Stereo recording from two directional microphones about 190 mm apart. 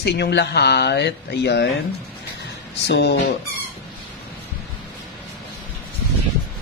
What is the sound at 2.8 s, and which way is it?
Speech, 60° left (ahead or behind).